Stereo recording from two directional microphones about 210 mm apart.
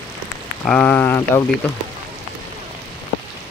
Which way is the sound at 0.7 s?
5° left (ahead or behind).